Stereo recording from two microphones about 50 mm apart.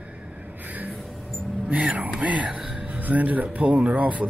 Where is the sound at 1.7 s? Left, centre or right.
Right.